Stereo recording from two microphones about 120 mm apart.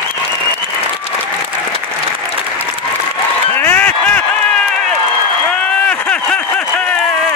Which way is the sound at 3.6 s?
15° left (ahead or behind).